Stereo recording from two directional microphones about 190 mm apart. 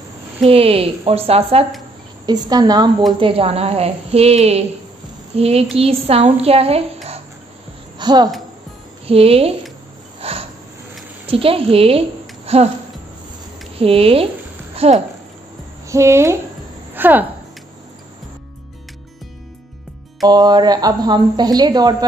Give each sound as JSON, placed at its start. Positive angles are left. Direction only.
{"t": 0.4, "sound": "a woman's voice", "side_deg": -30}
{"t": 2.2, "sound": "a woman's voice", "side_deg": -20}
{"t": 8.0, "sound": "a woman's voice", "side_deg": -20}
{"t": 10.2, "sound": "a sound", "side_deg": -30}
{"t": 11.2, "sound": "speech", "side_deg": -30}
{"t": 13.7, "sound": "a woman's voice", "side_deg": -30}
{"t": 15.9, "sound": "speech", "side_deg": -15}
{"t": 20.2, "sound": "speech", "side_deg": -20}